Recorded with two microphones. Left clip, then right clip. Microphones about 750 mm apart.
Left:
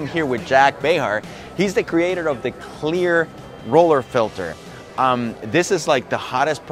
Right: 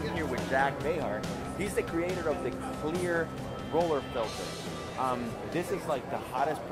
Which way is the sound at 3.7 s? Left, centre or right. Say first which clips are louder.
Left 15 dB; left.